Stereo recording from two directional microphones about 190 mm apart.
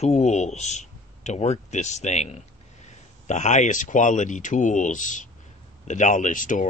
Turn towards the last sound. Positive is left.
turn(degrees=45)  # may be behind; listen again after turning